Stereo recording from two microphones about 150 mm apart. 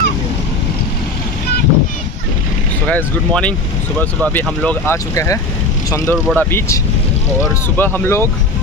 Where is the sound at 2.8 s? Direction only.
10° left (ahead or behind).